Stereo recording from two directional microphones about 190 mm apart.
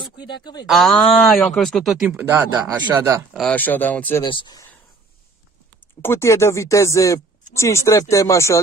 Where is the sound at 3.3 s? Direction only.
5° left (ahead or behind).